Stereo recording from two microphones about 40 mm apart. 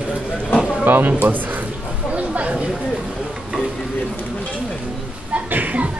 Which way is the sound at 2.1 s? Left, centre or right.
Right.